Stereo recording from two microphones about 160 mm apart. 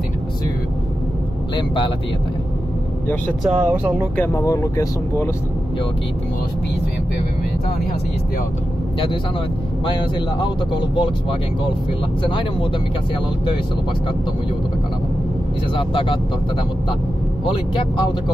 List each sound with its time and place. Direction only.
3.4 s speech: 15° right (ahead or behind)
4.3 s speech: 20° left (ahead or behind)
10.4 s speech: 30° left (ahead or behind)
12.2 s speech: 30° left (ahead or behind)
15.7 s speech: 30° left (ahead or behind)
17.5 s speech: 30° left (ahead or behind)